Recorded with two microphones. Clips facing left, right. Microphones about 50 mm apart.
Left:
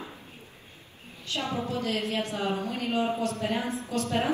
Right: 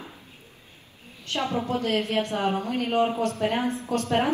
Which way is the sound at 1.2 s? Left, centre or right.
Right.